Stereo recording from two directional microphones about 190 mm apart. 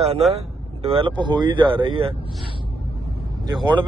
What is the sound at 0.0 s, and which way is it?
A man's voice, 30° right (ahead or behind).